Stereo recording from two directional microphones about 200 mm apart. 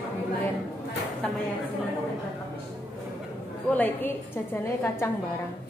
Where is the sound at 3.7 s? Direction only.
10° left (ahead or behind).